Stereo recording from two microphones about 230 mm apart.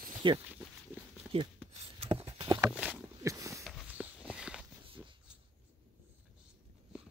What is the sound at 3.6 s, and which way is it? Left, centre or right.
Walk, centre.